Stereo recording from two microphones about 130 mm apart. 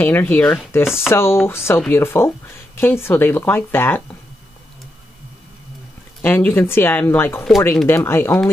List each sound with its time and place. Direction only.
0.0 s speech: 15° left (ahead or behind)
0.8 s speech: 5° right (ahead or behind)
1.1 s speech: 20° left (ahead or behind)
6.2 s speech: 15° left (ahead or behind)